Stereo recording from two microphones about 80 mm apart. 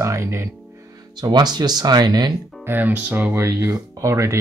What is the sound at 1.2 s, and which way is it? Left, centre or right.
Speech, right.